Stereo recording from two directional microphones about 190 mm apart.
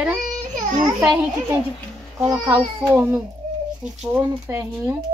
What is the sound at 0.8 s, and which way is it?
A child's voice, 20° right (ahead or behind).